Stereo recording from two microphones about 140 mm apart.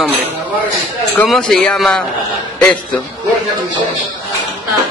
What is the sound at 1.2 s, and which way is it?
A man's voice, 5° left (ahead or behind).